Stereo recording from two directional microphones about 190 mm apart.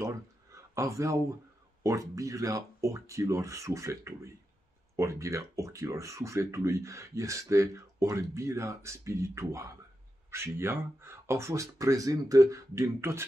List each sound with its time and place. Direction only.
0.0 s speech: 15° right (ahead or behind)